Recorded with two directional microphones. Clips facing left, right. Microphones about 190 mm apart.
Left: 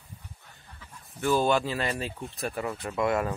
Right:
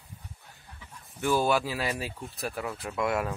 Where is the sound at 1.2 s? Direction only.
10° right (ahead or behind).